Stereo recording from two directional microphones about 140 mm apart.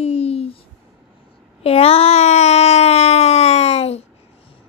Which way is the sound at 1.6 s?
45° left (ahead or behind).